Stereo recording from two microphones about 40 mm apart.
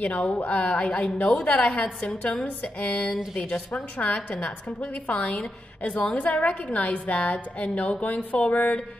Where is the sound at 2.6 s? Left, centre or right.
Left.